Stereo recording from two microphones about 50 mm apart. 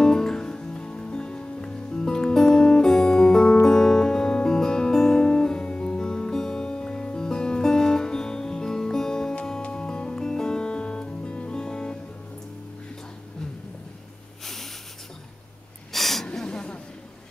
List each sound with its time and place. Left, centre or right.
0.0 s music: centre
14.4 s snort: centre
15.9 s gasp: centre
16.4 s a sound: left